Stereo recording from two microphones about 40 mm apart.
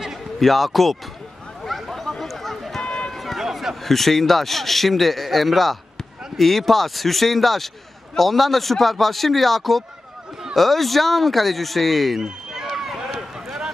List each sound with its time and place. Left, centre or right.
0.4 s speech: centre
1.6 s a sound: centre
2.8 s run: left
3.1 s run: centre
3.8 s speech: centre
12.7 s run: centre